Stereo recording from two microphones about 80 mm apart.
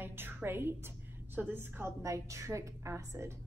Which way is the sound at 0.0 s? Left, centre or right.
Right.